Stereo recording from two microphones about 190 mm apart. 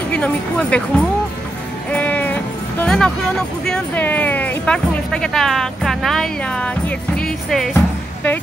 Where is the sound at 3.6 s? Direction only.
5° left (ahead or behind).